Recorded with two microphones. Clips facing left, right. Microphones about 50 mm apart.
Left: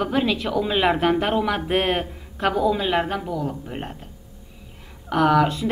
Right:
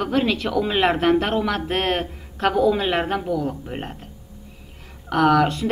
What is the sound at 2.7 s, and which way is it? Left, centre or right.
Speech, centre.